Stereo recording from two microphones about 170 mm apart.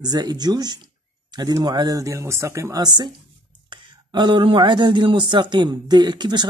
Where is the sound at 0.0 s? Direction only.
25° right (ahead or behind).